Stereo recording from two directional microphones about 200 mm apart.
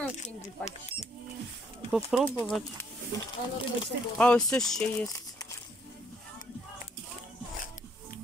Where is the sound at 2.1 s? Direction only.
Centre (ahead or behind).